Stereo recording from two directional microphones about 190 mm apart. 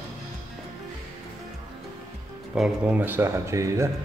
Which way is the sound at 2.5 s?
5° right (ahead or behind).